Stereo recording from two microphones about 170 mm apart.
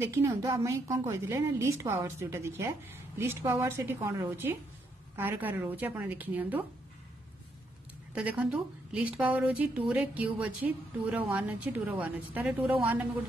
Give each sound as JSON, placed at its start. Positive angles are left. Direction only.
{"t": 0.0, "sound": "a woman's voice", "side_deg": -15}
{"t": 8.1, "sound": "a woman's voice", "side_deg": -5}